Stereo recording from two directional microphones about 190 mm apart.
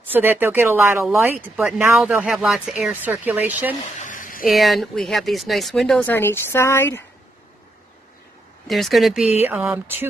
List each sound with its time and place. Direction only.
0.1 s speech: 10° right (ahead or behind)
4.0 s a sound: 45° left (ahead or behind)
4.5 s speech: centre (ahead or behind)
8.6 s speech: centre (ahead or behind)